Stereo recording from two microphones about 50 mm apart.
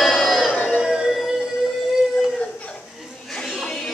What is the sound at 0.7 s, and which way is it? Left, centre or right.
Music, centre.